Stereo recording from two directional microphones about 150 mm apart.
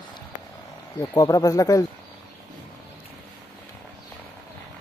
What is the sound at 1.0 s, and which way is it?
Speech, 25° left (ahead or behind).